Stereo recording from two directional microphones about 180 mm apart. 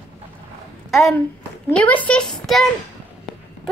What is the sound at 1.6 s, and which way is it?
A woman's voice, 10° left (ahead or behind).